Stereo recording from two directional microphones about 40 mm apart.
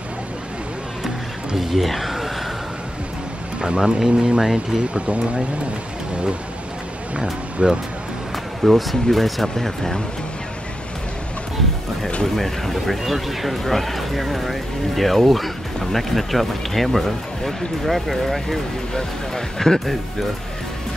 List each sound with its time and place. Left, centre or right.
1.6 s speech: centre
3.6 s speech: right
4.9 s speech: right
7.6 s speech: right
8.6 s speech: centre
12.4 s speech: centre
18.9 s speech: centre